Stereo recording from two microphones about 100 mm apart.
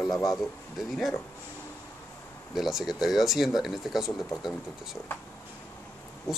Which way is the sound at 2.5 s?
Centre (ahead or behind).